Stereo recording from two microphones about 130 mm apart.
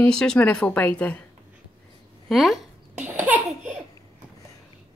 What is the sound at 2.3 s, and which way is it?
Speech, centre (ahead or behind).